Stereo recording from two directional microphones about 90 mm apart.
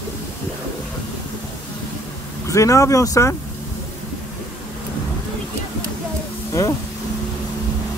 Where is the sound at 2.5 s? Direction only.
35° left (ahead or behind).